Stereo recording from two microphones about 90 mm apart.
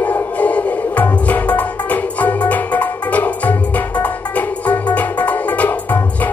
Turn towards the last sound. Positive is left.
turn(degrees=15)  # may be behind; listen again after turning